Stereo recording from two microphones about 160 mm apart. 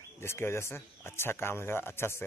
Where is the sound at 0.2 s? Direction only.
15° left (ahead or behind).